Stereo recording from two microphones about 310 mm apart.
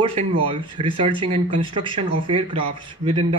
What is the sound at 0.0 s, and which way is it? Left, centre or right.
Speech, centre.